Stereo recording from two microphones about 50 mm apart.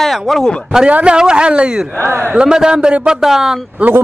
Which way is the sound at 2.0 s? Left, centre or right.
Right.